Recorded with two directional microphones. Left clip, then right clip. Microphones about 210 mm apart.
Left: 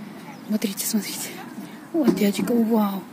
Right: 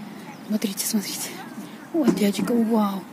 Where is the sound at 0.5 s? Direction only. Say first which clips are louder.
Even; 5° left (ahead or behind).